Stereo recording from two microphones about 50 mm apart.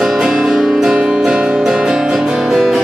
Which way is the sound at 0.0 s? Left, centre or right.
Centre.